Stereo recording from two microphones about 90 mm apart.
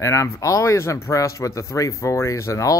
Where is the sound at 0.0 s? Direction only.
35° left (ahead or behind).